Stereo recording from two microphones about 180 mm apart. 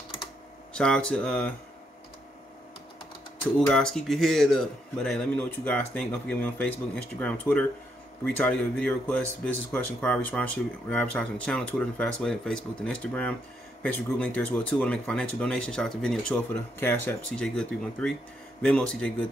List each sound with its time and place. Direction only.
0.7 s a man's voice: 5° left (ahead or behind)
3.5 s a man's voice: 5° left (ahead or behind)